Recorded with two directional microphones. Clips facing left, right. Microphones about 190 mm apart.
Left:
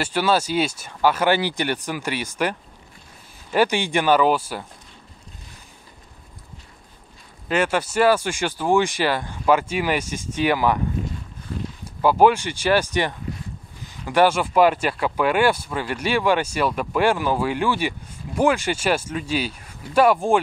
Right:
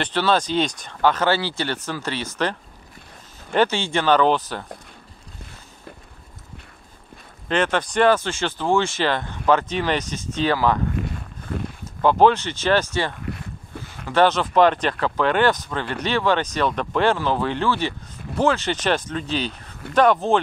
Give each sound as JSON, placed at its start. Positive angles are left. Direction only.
{"t": 0.0, "sound": "speech", "side_deg": 10}
{"t": 3.5, "sound": "speech", "side_deg": 15}
{"t": 7.4, "sound": "speech", "side_deg": 10}
{"t": 11.0, "sound": "a sound", "side_deg": -65}
{"t": 11.8, "sound": "speech", "side_deg": 10}
{"t": 13.3, "sound": "a sound", "side_deg": -65}
{"t": 14.0, "sound": "speech", "side_deg": 10}